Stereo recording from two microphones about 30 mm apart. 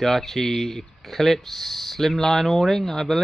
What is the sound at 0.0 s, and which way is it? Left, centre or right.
Speech, centre.